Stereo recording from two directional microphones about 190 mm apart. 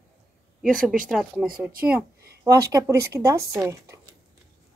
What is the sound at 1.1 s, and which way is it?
Speech, 5° right (ahead or behind).